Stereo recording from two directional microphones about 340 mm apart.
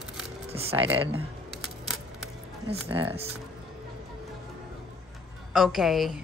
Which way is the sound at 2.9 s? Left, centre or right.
Centre.